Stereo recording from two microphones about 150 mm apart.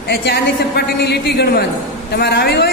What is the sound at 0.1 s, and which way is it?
A man's voice, 90° left.